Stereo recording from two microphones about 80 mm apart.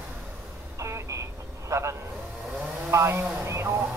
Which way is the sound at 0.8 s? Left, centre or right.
Right.